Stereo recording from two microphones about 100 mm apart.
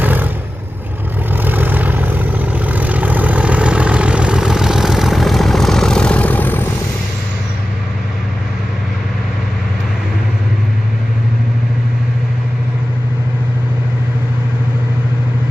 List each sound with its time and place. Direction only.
0.0 s vehicle: 20° right (ahead or behind)
1.3 s vehicle: 20° right (ahead or behind); by 6.7 s 20° left (ahead or behind)